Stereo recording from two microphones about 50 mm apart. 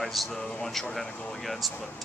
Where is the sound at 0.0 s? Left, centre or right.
Centre.